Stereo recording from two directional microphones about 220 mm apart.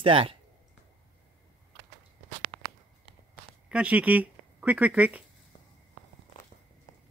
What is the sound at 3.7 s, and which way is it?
Speech, 5° right (ahead or behind).